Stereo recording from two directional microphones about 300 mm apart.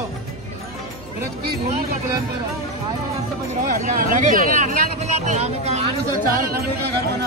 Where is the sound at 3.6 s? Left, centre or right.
Right.